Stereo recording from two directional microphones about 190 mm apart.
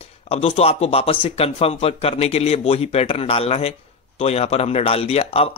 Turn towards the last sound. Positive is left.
turn(degrees=30)  # may be behind; listen again after turning